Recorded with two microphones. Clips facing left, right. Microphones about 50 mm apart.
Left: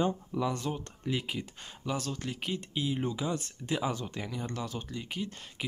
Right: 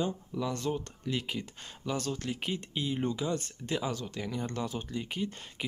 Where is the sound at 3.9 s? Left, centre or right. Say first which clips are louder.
Left 1 dB; centre.